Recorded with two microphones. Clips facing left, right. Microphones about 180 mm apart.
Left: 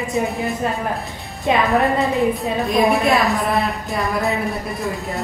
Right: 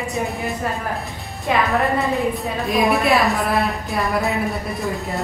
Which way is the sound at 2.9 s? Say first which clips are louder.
Even; centre (ahead or behind).